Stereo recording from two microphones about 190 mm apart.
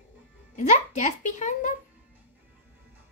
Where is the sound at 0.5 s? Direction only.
40° left (ahead or behind).